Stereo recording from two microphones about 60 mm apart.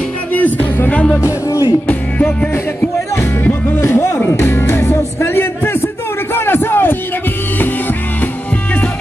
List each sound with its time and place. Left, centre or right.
0.3 s music: left
1.2 s music: left
1.9 s music: left
3.8 s music: left
6.3 s crowd: left